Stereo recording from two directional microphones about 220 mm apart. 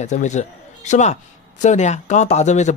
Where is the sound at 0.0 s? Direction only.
35° left (ahead or behind).